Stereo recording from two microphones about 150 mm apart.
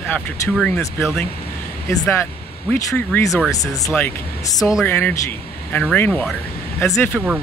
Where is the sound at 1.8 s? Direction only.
15° left (ahead or behind).